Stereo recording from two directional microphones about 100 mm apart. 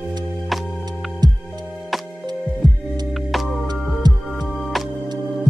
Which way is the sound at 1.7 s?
Centre (ahead or behind).